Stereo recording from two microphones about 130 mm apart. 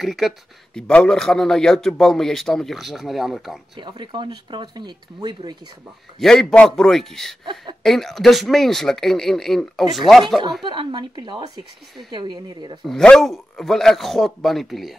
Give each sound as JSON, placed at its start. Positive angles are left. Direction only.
{"t": 0.0, "sound": "speech", "side_deg": 0}
{"t": 3.7, "sound": "speech", "side_deg": -35}
{"t": 6.1, "sound": "speech", "side_deg": 5}
{"t": 10.7, "sound": "speech", "side_deg": -35}
{"t": 12.8, "sound": "speech", "side_deg": 5}